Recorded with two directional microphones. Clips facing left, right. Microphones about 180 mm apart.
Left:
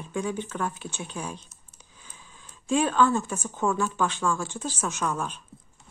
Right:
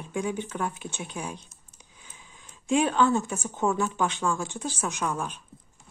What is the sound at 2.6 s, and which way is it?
Speech, 15° right (ahead or behind).